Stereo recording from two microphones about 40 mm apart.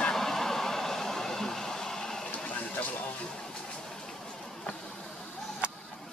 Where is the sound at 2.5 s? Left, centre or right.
Left.